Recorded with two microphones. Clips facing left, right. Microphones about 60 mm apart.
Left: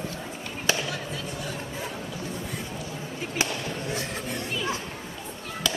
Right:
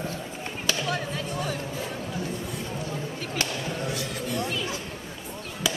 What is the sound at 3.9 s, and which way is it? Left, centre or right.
Music, left.